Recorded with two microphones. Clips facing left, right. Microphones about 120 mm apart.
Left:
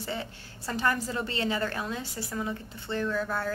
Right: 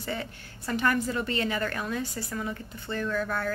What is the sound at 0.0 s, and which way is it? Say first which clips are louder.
A woman's voice: right 1 dB; 25° left (ahead or behind).